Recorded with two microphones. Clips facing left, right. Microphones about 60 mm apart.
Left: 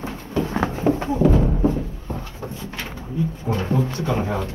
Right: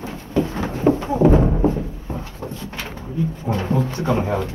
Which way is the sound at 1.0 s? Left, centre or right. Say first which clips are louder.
Right 3 dB; right.